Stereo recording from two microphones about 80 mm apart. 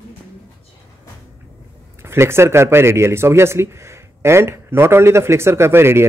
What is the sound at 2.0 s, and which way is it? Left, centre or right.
Speech, right.